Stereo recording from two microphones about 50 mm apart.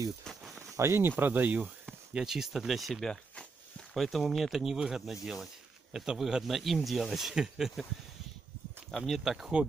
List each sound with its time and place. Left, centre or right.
0.3 s a sound: centre
0.6 s a sound: right
1.2 s speech: right
2.1 s speech: centre
8.9 s speech: centre
9.2 s speech: centre